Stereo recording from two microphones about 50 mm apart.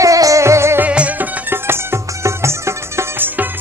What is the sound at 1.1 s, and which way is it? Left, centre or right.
Music, right.